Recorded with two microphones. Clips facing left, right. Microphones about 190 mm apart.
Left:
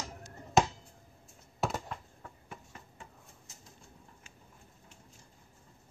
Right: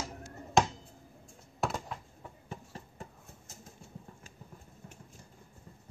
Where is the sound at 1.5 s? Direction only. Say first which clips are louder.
Even; centre (ahead or behind).